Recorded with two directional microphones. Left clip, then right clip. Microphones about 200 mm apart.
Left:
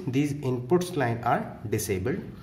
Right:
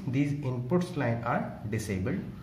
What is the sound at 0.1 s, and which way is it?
Speech, 40° left (ahead or behind).